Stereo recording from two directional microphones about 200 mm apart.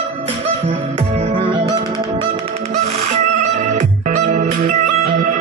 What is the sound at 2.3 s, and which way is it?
Music, 30° right (ahead or behind).